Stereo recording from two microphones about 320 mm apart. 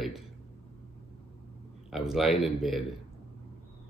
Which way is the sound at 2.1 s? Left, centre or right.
Centre.